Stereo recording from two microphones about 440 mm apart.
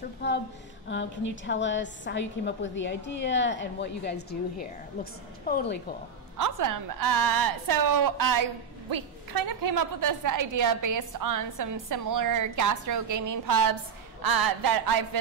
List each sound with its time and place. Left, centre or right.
0.2 s a woman's voice: left
6.3 s a woman's voice: right